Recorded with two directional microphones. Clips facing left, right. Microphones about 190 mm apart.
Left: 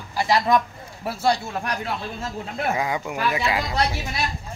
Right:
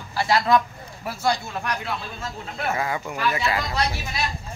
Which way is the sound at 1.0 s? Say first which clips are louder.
Left 2 dB; 30° left (ahead or behind).